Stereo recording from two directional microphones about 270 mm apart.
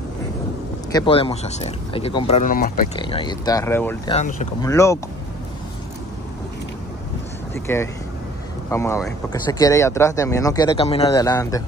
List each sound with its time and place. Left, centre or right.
0.9 s speech: centre
3.0 s speech: centre
4.2 s speech: left
4.6 s speech: centre
7.5 s speech: centre